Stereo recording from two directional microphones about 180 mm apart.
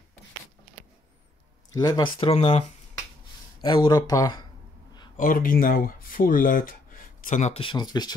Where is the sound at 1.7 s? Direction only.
20° left (ahead or behind).